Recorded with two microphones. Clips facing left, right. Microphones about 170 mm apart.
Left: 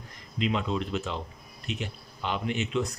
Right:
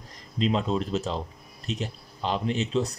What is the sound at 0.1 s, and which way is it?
Speech, 35° right (ahead or behind).